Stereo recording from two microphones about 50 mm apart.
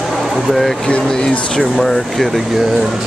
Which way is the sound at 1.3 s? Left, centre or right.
Centre.